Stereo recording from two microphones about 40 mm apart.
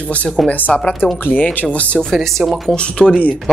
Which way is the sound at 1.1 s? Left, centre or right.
Left.